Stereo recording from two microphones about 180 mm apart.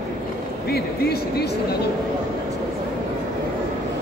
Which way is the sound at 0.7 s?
60° left (ahead or behind).